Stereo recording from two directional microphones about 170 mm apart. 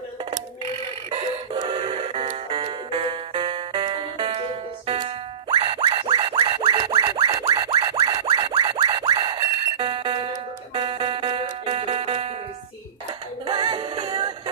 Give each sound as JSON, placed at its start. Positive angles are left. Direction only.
{"t": 1.1, "sound": "music", "side_deg": -30}
{"t": 6.6, "sound": "music", "side_deg": -20}
{"t": 13.5, "sound": "music", "side_deg": -25}